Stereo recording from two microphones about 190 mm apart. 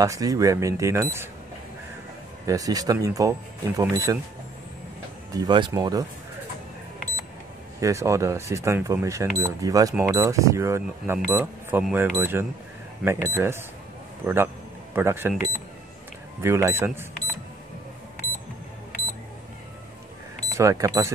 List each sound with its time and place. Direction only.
0.0 s speech: 15° right (ahead or behind)
2.4 s speech: 20° right (ahead or behind)
5.3 s speech: 20° right (ahead or behind)
7.8 s speech: 15° right (ahead or behind)
20.5 s speech: 15° right (ahead or behind)